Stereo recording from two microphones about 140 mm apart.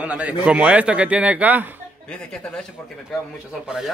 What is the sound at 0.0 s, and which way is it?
A man's voice, 10° right (ahead or behind).